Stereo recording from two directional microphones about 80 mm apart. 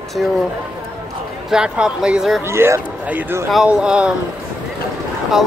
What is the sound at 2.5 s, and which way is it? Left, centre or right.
Speech, right.